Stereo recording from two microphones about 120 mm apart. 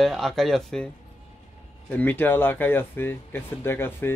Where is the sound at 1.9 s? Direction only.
15° left (ahead or behind).